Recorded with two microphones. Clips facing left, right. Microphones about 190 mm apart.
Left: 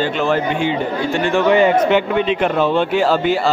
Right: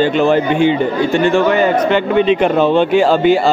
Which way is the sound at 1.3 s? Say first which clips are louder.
Left 3 dB; 20° left (ahead or behind).